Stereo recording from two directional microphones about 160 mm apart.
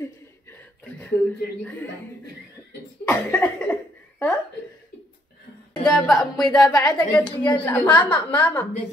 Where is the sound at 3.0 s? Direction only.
10° left (ahead or behind).